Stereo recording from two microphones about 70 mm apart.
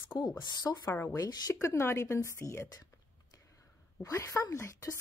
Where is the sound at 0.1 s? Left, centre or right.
Left.